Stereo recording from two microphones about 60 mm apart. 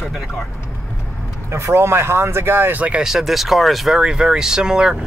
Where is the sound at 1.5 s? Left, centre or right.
Right.